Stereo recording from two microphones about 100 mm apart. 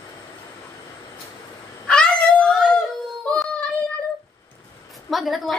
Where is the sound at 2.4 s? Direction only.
5° left (ahead or behind).